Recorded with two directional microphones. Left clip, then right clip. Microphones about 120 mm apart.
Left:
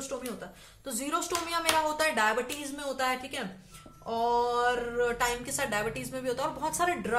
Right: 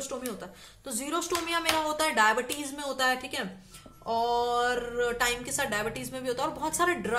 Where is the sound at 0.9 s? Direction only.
20° right (ahead or behind).